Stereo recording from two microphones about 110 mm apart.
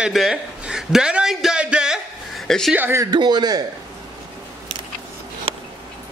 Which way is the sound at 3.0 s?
40° right (ahead or behind).